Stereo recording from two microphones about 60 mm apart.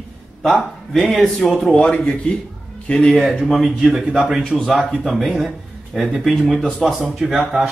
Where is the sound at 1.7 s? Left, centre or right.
Centre.